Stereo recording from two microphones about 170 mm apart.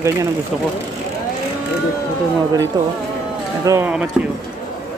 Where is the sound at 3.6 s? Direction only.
15° right (ahead or behind).